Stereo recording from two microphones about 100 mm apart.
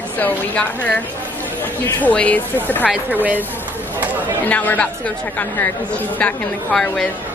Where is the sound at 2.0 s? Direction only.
15° left (ahead or behind).